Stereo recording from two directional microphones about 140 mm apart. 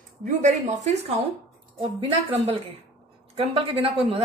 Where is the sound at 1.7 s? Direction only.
40° right (ahead or behind).